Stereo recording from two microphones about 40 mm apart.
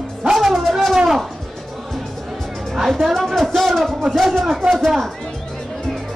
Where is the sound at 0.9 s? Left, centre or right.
Centre.